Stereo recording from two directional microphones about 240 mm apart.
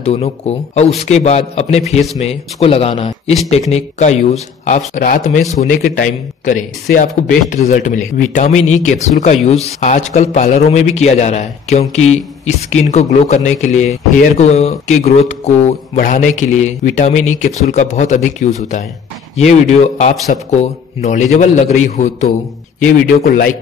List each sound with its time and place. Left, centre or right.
0.0 s a man's voice: left